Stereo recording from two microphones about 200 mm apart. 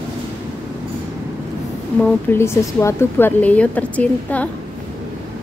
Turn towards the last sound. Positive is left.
turn(degrees=5)  # may be behind; listen again after turning